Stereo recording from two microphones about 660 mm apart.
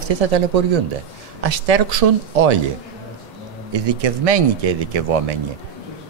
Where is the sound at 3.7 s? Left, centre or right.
Right.